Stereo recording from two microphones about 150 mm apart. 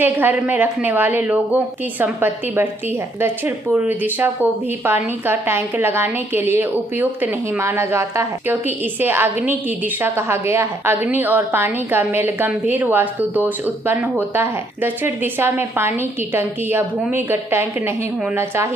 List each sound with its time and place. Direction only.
0.0 s a woman's voice: 10° right (ahead or behind)